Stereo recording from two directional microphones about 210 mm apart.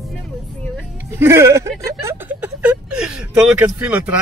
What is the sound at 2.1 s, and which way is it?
Speech, 5° right (ahead or behind).